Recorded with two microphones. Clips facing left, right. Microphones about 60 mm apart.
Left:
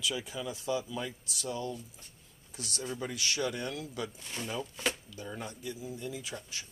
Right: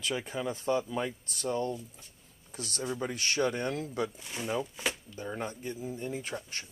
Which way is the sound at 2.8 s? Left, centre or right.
Right.